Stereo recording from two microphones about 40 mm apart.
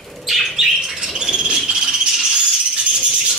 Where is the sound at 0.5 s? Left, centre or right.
Centre.